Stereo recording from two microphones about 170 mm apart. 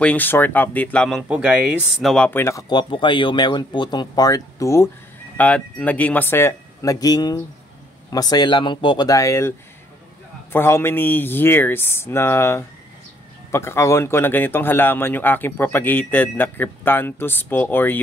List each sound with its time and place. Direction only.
0.0 s speech: 10° left (ahead or behind)
10.5 s speech: 15° left (ahead or behind)